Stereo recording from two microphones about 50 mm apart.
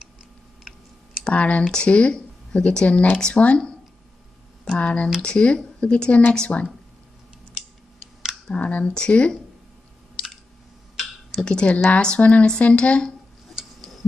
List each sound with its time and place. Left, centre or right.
0.7 s clicking: centre
1.3 s speech: left
4.7 s speech: left
6.5 s speech: left
8.5 s speech: left
11.4 s speech: centre